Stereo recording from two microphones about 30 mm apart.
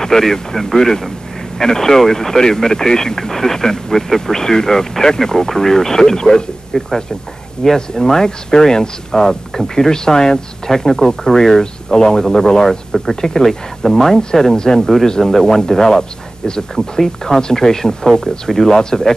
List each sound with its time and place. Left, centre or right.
0.0 s speech: centre
10.7 s speech: centre
18.8 s speech: left